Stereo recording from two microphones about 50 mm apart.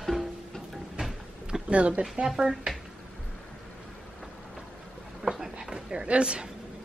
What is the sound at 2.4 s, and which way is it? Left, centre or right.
Speech, centre.